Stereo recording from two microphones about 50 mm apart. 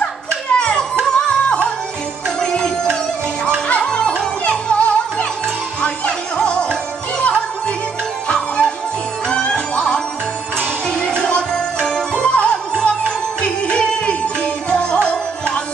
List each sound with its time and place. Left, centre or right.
0.5 s music: centre